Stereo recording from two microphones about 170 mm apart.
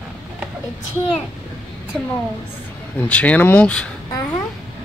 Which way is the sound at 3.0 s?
10° left (ahead or behind).